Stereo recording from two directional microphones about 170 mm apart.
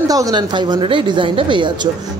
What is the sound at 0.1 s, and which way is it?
Speech, 20° right (ahead or behind).